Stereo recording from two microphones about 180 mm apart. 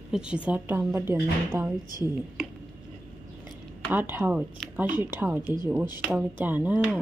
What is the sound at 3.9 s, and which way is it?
Speech, 10° right (ahead or behind).